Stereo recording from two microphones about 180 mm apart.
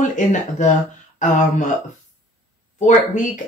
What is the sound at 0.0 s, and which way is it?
Speech, 40° left (ahead or behind).